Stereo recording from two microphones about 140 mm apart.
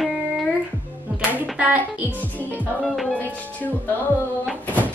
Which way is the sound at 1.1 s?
5° right (ahead or behind).